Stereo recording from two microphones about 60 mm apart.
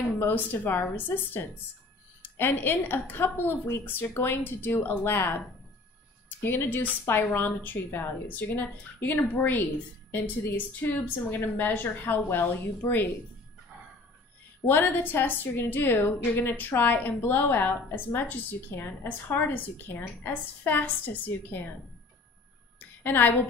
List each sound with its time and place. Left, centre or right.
0.2 s a woman's voice: left
3.6 s a woman's voice: left
14.7 s a woman's voice: left
22.8 s a sound: left